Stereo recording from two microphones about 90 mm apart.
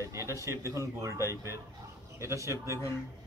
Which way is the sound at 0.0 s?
35° right (ahead or behind).